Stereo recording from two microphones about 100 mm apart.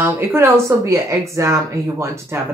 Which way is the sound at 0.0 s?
25° right (ahead or behind).